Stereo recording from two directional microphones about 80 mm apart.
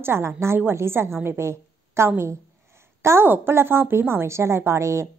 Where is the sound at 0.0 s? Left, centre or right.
Right.